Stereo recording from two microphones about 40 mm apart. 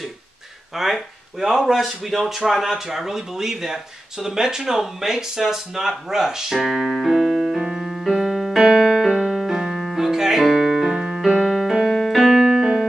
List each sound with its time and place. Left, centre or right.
0.7 s speech: centre
7.6 s keyboard: centre
9.1 s music: centre
9.5 s keyboard: centre
10.9 s keyboard: centre
11.4 s keyboard: centre